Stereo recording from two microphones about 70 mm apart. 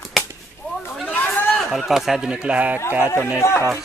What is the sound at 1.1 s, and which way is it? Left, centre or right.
Chatter, left.